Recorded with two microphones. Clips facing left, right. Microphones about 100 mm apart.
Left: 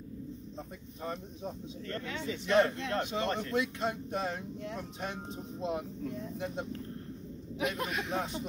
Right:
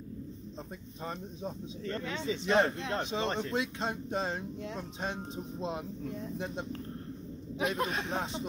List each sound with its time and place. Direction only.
2.0 s speech: 25° right (ahead or behind)